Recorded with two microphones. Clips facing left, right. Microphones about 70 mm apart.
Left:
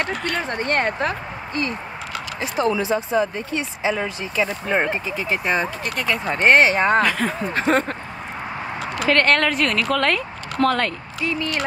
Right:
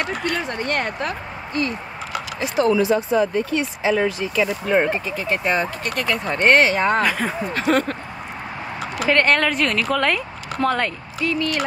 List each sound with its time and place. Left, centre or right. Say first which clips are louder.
0.0 s speech: even; left; by 6.4 s centre
6.5 s speech: left 1 dB; left
7.0 s speech: left 1 dB; centre
7.5 s speech: even; left
9.1 s speech: even; centre
11.2 s speech: right 2 dB; left